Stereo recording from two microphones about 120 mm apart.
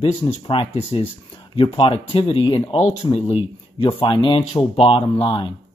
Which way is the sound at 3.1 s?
50° left (ahead or behind).